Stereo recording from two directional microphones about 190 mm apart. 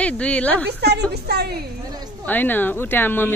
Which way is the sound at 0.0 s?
5° left (ahead or behind).